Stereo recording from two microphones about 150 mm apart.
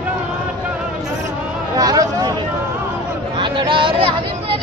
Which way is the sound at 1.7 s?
25° right (ahead or behind).